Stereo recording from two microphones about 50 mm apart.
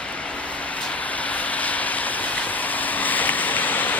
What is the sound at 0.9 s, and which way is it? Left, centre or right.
Vehicle, left.